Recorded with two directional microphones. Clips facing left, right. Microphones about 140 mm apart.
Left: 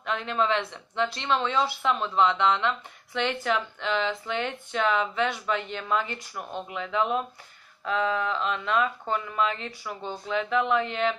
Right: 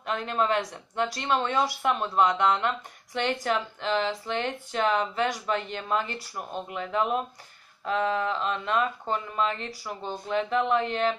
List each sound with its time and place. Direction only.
0.0 s speech: 40° right (ahead or behind)